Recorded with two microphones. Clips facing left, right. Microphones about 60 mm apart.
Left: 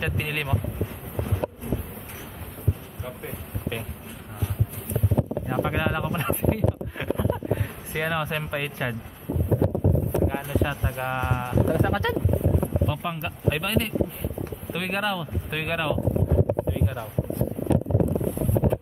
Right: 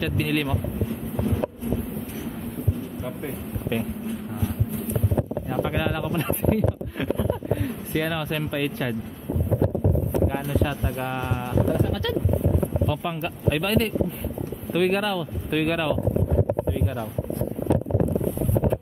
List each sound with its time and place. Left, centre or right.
0.0 s speech: centre
3.7 s speech: centre
5.5 s speech: centre
7.9 s speech: centre
10.5 s speech: centre
11.1 s speech: centre
11.8 s speech: left
12.8 s speech: centre